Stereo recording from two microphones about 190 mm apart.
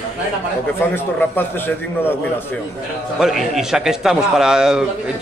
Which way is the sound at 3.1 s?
Centre (ahead or behind).